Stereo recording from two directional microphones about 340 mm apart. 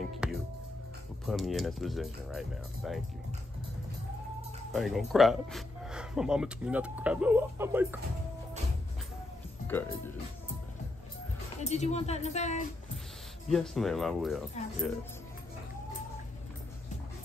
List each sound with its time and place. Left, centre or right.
0.2 s music: centre
1.2 s speech: centre
4.7 s speech: centre
9.7 s speech: centre
11.6 s speech: centre
13.5 s speech: centre